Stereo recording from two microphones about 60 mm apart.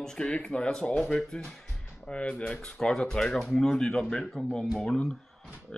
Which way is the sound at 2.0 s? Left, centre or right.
Centre.